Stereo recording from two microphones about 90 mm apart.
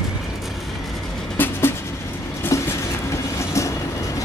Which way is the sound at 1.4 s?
25° left (ahead or behind).